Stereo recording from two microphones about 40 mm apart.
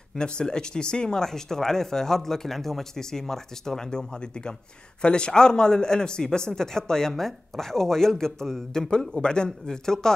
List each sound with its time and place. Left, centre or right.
0.1 s speech: left
8.9 s speech: left